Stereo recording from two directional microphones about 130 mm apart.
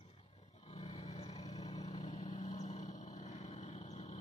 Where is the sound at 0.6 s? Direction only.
50° left (ahead or behind).